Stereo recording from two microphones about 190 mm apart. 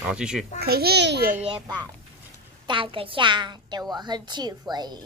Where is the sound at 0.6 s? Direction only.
55° right (ahead or behind).